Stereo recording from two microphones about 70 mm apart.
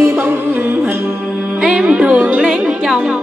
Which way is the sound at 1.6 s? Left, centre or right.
Centre.